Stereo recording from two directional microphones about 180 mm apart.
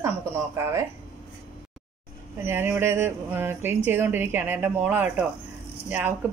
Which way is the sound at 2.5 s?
10° right (ahead or behind).